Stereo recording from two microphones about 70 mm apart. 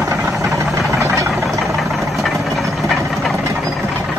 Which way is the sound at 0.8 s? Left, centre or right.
Right.